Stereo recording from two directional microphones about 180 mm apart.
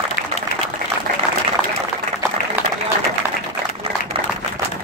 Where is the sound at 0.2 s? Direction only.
55° left (ahead or behind).